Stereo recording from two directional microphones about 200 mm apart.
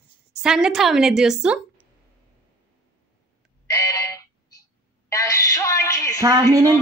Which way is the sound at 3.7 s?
15° left (ahead or behind).